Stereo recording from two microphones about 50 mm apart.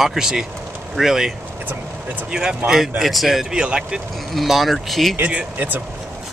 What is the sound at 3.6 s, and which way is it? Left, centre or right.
Speech, centre.